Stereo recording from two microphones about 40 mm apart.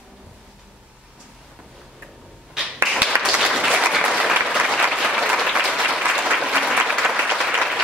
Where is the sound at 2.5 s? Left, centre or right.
Centre.